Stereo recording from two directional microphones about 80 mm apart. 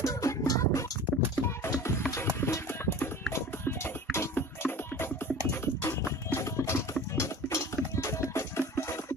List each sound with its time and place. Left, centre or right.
0.0 s music: left